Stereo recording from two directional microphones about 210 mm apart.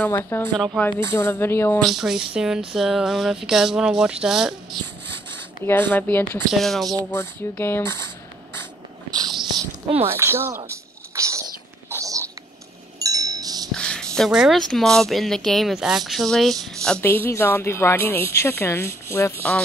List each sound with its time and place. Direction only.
0.0 s speech: 10° left (ahead or behind)
0.5 s speech: 5° right (ahead or behind)
0.7 s speech: 10° left (ahead or behind)
1.9 s speech: centre (ahead or behind)
5.7 s speech: 10° left (ahead or behind)
7.1 s speech: 10° left (ahead or behind)
10.0 s speech: 10° right (ahead or behind)
10.6 s a sound: 15° right (ahead or behind)
11.9 s whispering: 15° right (ahead or behind)
13.0 s wind chime: 15° right (ahead or behind)
13.7 s a sound: 5° left (ahead or behind)
15.0 s speech: centre (ahead or behind)